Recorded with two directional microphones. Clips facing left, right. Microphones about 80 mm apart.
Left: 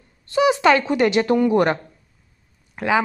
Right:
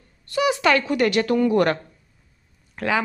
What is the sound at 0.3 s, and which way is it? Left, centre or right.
A woman's voice, left.